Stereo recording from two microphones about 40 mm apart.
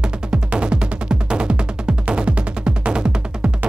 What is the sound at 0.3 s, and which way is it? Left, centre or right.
Music, right.